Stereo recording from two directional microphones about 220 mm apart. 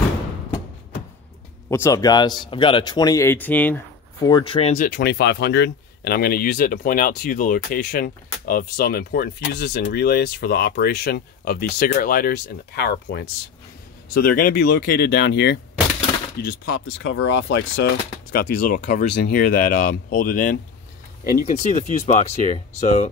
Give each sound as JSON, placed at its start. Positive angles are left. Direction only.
{"t": 1.7, "sound": "speech", "side_deg": 15}
{"t": 4.7, "sound": "speech", "side_deg": 45}
{"t": 16.8, "sound": "speech", "side_deg": 65}